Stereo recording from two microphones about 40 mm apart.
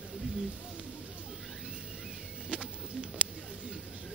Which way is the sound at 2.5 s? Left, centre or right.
Right.